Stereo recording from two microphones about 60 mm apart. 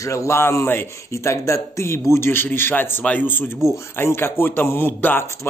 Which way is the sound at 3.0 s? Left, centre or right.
Left.